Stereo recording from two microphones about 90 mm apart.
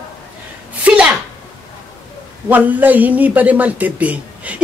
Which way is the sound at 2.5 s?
20° right (ahead or behind).